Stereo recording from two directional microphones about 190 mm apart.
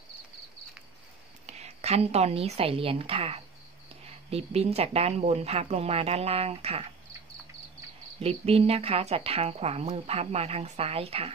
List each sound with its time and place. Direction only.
1.4 s a woman's voice: 35° right (ahead or behind)
8.2 s speech: 30° right (ahead or behind)